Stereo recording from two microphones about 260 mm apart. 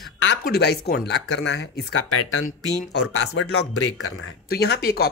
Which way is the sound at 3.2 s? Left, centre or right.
Left.